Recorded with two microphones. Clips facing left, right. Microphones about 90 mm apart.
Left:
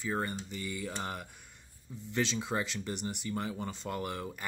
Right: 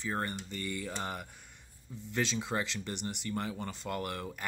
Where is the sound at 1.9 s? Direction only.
10° left (ahead or behind).